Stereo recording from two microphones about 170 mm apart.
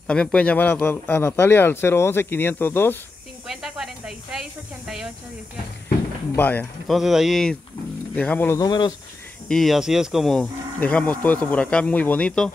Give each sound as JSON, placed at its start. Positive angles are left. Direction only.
{"t": 0.0, "sound": "speech", "side_deg": 5}
{"t": 3.4, "sound": "livestock", "side_deg": 0}
{"t": 6.3, "sound": "speech", "side_deg": 10}
{"t": 6.9, "sound": "livestock", "side_deg": 0}
{"t": 8.2, "sound": "speech", "side_deg": 10}
{"t": 8.6, "sound": "speech", "side_deg": 25}
{"t": 9.5, "sound": "livestock", "side_deg": 0}
{"t": 11.4, "sound": "speech", "side_deg": 10}